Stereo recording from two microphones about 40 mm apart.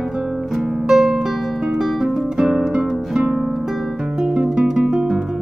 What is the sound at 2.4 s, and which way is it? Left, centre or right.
Music, centre.